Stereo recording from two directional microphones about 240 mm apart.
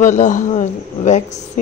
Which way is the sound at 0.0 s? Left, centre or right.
Left.